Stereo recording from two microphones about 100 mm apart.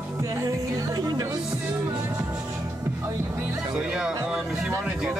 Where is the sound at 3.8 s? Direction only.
10° right (ahead or behind).